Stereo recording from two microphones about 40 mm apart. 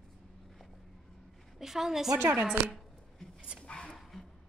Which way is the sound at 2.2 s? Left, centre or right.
Right.